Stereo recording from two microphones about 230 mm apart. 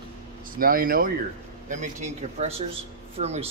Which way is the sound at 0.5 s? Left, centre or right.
Right.